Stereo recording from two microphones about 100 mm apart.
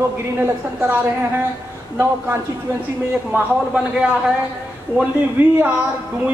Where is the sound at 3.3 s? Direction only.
10° right (ahead or behind).